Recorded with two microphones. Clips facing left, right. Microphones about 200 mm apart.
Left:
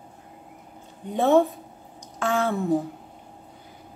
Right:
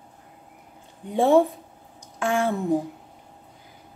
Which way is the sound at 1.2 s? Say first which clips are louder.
Right 1 dB; 10° right (ahead or behind).